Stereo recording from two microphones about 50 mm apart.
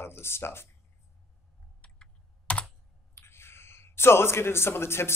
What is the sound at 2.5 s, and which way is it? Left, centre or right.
Computer keyboard, left.